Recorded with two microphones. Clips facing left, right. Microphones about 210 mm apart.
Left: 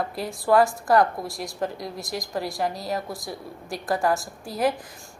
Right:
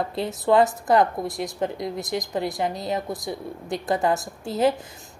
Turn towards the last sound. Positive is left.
turn(degrees=-25)  # may be behind; listen again after turning